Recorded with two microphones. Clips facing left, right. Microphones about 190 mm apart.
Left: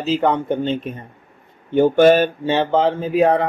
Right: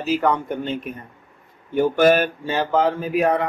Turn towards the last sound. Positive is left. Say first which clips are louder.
# left 4 dB
turn(degrees=30)  # may be behind; listen again after turning